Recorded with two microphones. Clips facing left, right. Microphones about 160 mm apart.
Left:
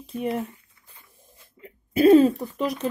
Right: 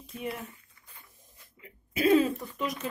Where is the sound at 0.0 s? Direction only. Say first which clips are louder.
Left 9 dB; 35° left (ahead or behind).